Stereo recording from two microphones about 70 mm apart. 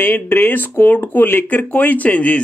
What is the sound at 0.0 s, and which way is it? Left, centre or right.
Speech, left.